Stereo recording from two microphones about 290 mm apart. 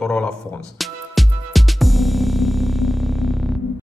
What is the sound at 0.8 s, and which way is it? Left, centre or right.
Music, centre.